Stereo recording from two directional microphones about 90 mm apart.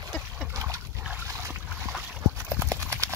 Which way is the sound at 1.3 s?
30° right (ahead or behind).